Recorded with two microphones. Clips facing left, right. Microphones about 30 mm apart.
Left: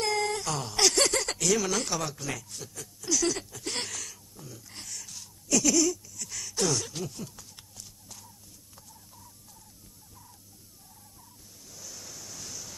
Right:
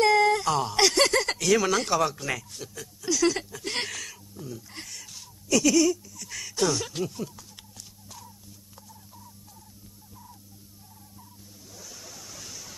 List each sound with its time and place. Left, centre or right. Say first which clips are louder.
0.0 s speech: right 8 dB; centre
2.8 s a sound: right 4 dB; centre
11.7 s waves: right 1 dB; centre